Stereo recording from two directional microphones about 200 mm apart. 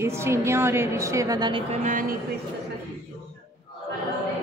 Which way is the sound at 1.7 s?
40° right (ahead or behind).